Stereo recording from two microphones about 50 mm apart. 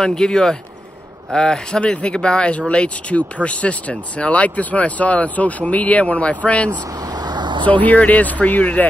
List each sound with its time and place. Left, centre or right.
0.0 s speech: centre; by 8.8 s left